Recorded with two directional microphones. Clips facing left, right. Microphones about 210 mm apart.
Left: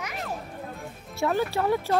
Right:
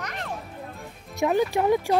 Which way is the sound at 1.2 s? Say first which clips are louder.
Right 3 dB; 15° right (ahead or behind).